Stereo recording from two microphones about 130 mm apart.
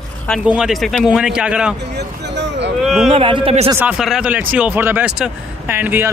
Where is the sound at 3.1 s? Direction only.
40° right (ahead or behind).